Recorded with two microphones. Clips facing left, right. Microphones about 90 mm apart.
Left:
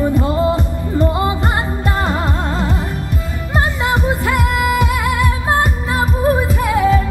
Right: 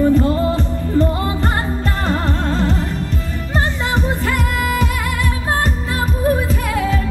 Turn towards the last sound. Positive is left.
turn(degrees=20)  # may be behind; listen again after turning